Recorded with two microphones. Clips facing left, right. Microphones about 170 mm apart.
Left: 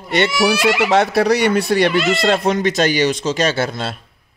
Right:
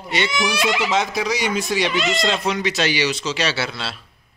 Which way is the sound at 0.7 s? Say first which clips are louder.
Left 7 dB; 65° left (ahead or behind).